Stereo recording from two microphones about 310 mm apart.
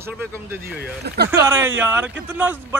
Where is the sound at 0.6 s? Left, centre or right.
Right.